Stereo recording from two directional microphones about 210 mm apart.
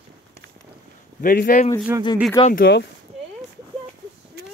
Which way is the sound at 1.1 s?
40° left (ahead or behind).